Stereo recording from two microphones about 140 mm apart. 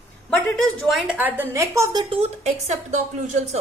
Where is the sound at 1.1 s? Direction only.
15° right (ahead or behind).